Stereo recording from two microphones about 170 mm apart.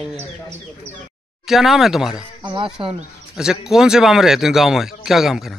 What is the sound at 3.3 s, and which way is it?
A man's voice, 5° right (ahead or behind).